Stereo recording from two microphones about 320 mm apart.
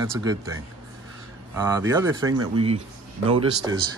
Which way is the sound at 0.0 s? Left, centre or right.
Centre.